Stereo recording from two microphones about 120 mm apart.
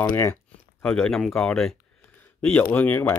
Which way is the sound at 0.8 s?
5° left (ahead or behind).